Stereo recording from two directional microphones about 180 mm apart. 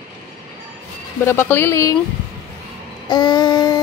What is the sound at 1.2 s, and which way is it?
Speech, 15° left (ahead or behind).